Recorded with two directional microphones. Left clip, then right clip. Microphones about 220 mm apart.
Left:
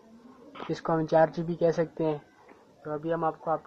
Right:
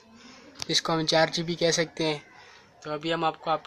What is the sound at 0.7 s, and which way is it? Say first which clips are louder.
Speech: even; 35° right (ahead or behind).